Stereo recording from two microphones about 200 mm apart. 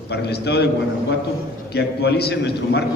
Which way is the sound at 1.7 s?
55° left (ahead or behind).